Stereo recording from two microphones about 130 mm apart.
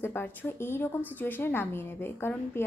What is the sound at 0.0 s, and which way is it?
A woman's voice, 15° left (ahead or behind).